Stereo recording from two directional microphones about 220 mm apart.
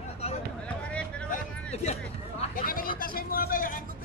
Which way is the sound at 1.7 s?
30° left (ahead or behind).